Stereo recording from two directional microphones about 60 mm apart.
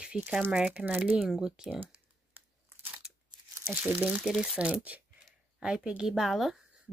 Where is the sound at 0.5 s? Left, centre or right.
Centre.